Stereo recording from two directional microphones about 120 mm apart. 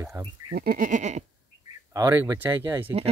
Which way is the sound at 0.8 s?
85° right.